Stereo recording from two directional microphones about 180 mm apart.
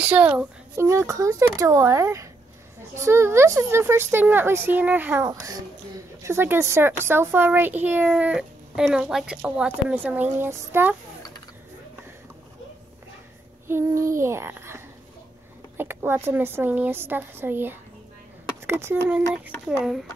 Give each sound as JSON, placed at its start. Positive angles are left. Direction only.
{"t": 0.0, "sound": "a woman's voice", "side_deg": -10}
{"t": 13.7, "sound": "a woman's voice", "side_deg": -15}
{"t": 15.8, "sound": "a woman's voice", "side_deg": -10}